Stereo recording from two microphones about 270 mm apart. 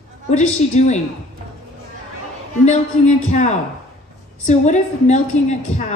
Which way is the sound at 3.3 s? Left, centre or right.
Left.